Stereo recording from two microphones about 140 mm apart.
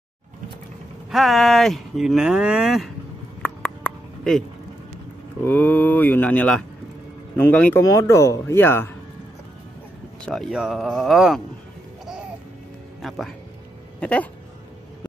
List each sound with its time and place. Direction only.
1.1 s speech: centre (ahead or behind)
3.4 s a sound: 5° left (ahead or behind)
5.4 s speech: 15° left (ahead or behind)
7.8 s speech: 20° left (ahead or behind)
10.2 s speech: centre (ahead or behind)
13.0 s speech: centre (ahead or behind)
13.9 s speech: 10° left (ahead or behind)